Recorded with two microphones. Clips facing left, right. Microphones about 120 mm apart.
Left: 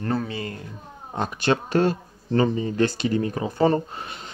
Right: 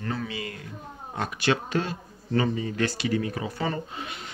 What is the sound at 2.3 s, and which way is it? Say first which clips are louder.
Speech: left 4 dB; 30° left (ahead or behind).